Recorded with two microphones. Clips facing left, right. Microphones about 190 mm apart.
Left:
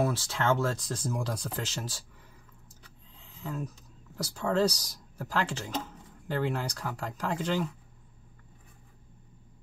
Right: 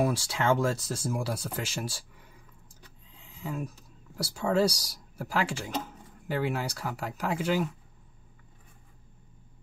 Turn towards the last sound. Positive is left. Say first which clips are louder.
# right 2 dB
turn(degrees=-10)  # may be behind; listen again after turning